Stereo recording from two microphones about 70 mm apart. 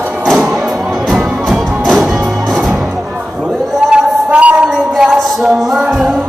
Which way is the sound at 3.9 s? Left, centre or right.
Centre.